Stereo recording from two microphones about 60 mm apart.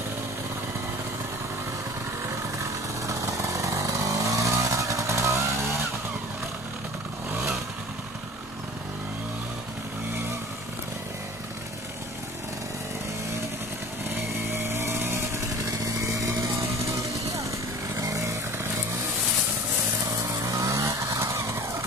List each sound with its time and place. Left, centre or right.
3.1 s vehicle: right
14.7 s vehicle: right
15.8 s vehicle: right
17.9 s chainsaw: right
18.2 s vehicle: right
20.3 s vehicle: right
21.2 s vehicle: right